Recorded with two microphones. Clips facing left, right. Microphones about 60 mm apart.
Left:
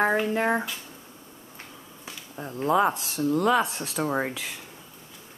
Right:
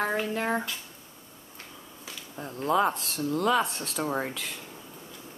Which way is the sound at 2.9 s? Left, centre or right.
Centre.